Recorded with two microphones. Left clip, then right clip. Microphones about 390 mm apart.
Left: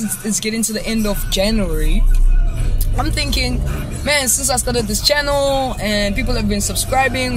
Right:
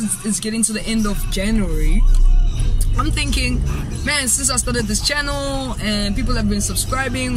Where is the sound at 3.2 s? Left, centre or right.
Left.